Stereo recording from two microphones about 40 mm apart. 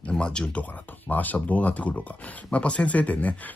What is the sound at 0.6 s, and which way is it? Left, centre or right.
Speech, left.